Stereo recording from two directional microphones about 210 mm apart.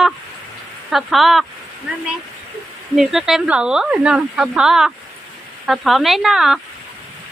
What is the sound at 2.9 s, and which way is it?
Speech, centre (ahead or behind).